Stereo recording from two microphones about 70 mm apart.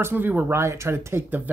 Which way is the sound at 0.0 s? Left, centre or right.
Right.